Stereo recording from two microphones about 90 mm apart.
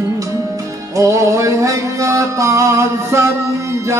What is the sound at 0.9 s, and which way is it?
Music, 35° right (ahead or behind).